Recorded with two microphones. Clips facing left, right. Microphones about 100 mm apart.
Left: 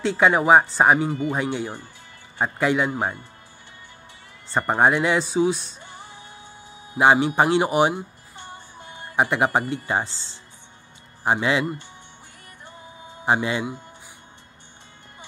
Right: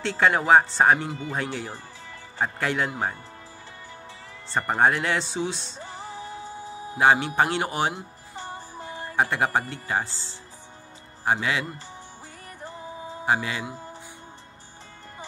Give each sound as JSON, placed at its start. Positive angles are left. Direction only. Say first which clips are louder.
{"t": 0.0, "sound": "speech", "louder": "left 4 dB", "side_deg": 10}
{"t": 4.6, "sound": "speech", "louder": "left 3 dB", "side_deg": 15}
{"t": 5.8, "sound": "music", "louder": "right 5 dB", "side_deg": -35}
{"t": 7.0, "sound": "speech", "louder": "left 3 dB", "side_deg": 15}
{"t": 8.5, "sound": "music", "louder": "right 4 dB", "side_deg": -35}
{"t": 9.1, "sound": "speech", "louder": "left 3 dB", "side_deg": 15}
{"t": 13.2, "sound": "speech", "louder": "left 4 dB", "side_deg": 25}